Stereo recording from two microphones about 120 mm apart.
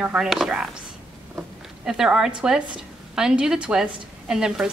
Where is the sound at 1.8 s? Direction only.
5° right (ahead or behind).